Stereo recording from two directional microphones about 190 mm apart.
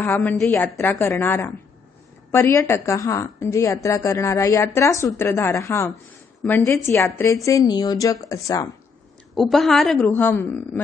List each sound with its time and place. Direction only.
0.0 s a woman's voice: 10° left (ahead or behind)
9.3 s a woman's voice: centre (ahead or behind)